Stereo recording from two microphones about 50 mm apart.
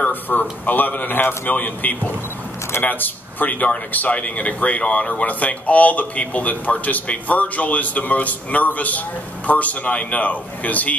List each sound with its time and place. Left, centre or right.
0.0 s speech: left